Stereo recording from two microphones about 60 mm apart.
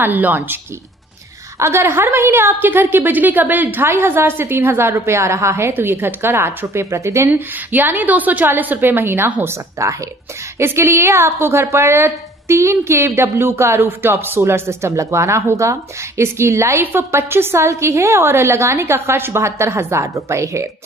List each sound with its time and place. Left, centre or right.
0.0 s a woman's voice: right
1.6 s a woman's voice: right
5.7 s a woman's voice: right
7.2 s a woman's voice: right
9.8 s speech: right
10.6 s a woman's voice: right